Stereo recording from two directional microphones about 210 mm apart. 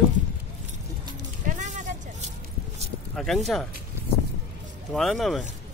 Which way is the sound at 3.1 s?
Centre (ahead or behind).